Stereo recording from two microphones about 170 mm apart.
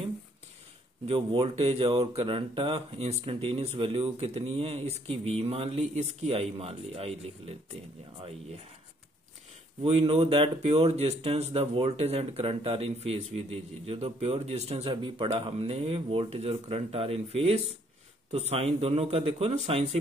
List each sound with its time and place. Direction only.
1.0 s speech: 35° right (ahead or behind)
9.8 s speech: 35° right (ahead or behind)